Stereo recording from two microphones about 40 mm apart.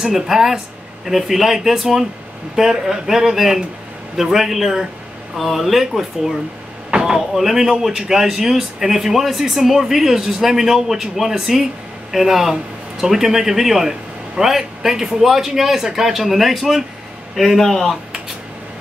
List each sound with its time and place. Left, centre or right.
0.0 s speech: centre
6.9 s vehicle: right
7.2 s speech: centre